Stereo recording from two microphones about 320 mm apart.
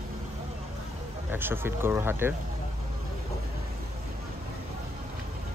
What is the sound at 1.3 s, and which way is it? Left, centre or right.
Speech, centre.